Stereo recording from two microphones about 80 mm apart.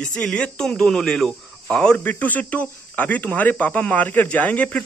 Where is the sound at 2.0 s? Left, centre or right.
Left.